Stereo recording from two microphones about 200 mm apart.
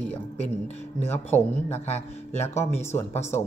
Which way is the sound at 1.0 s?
10° left (ahead or behind).